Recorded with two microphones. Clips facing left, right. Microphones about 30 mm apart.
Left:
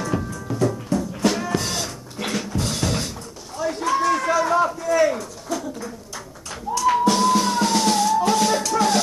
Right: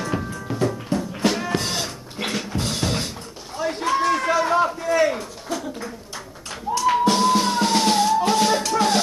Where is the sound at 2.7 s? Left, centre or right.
Right.